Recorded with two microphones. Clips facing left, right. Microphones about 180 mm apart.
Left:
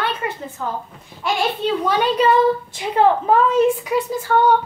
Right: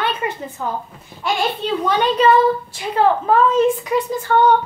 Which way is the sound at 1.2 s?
Centre (ahead or behind).